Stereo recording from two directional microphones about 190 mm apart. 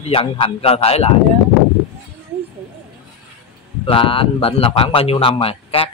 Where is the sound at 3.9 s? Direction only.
25° left (ahead or behind).